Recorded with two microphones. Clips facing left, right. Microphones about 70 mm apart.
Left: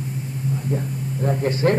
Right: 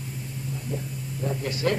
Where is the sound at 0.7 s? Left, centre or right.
Left.